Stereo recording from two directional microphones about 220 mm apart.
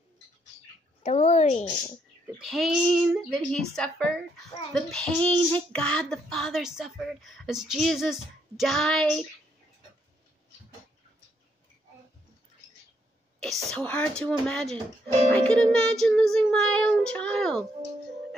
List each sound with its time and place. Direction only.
1.0 s speech: 30° left (ahead or behind)
2.5 s speech: centre (ahead or behind)
13.4 s a woman's voice: centre (ahead or behind)